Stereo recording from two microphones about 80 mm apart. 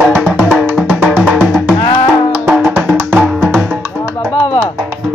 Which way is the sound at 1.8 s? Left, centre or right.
Left.